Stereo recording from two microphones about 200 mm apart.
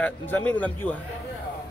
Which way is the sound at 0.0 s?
10° left (ahead or behind).